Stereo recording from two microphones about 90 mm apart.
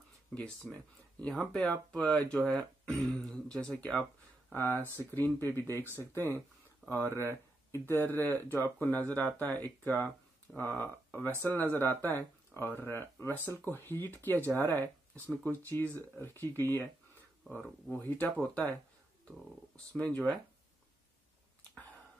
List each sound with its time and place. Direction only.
0.3 s speech: 15° left (ahead or behind)
4.5 s speech: 20° left (ahead or behind)
7.1 s speech: 30° right (ahead or behind)
7.7 s speech: 25° left (ahead or behind)
17.9 s speech: 20° left (ahead or behind)